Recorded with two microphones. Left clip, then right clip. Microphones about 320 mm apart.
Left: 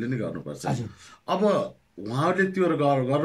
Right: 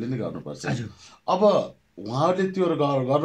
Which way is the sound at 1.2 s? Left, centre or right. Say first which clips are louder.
Right 4 dB; centre.